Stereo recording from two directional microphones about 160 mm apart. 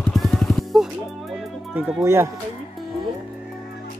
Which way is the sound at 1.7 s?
15° right (ahead or behind).